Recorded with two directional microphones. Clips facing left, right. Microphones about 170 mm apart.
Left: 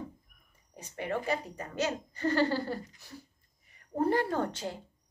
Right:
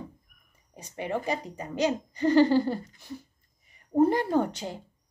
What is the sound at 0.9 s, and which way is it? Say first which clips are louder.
A woman's voice: right 2 dB; 15° right (ahead or behind).